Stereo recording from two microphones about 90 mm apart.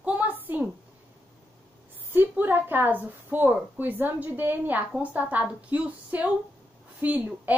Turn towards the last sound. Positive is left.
turn(degrees=-20)  # may be behind; listen again after turning